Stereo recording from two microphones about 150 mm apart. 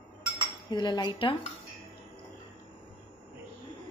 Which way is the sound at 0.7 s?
30° left (ahead or behind).